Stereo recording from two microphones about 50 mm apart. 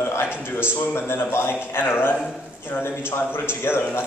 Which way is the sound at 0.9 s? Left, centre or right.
Left.